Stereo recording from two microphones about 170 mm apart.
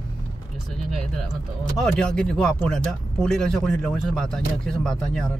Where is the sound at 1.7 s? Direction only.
5° left (ahead or behind).